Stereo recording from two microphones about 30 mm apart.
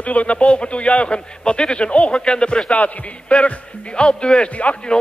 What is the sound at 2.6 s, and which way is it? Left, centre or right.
Speech, left.